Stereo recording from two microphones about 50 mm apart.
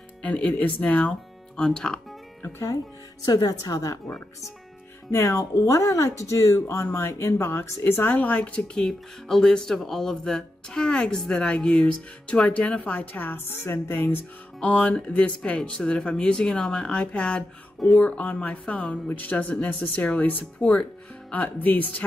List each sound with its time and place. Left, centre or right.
0.2 s speech: left
1.6 s speech: centre
5.1 s speech: left
6.9 s speech: left
8.2 s speech: left
8.8 s speech: centre; by 14.2 s left
14.6 s speech: left